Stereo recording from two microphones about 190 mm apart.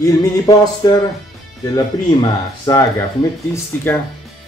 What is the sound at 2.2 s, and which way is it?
Music, 20° left (ahead or behind).